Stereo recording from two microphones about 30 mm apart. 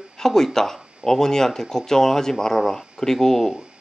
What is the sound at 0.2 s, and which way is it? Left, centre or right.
Speech, centre.